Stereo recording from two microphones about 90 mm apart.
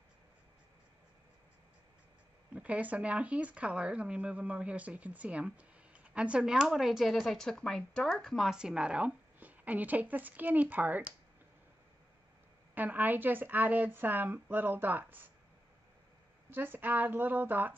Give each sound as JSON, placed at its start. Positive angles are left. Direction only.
{"t": 2.5, "sound": "speech", "side_deg": -15}
{"t": 12.7, "sound": "a woman's voice", "side_deg": -20}
{"t": 16.4, "sound": "a woman's voice", "side_deg": -25}